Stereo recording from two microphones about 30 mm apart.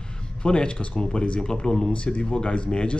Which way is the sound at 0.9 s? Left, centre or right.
Left.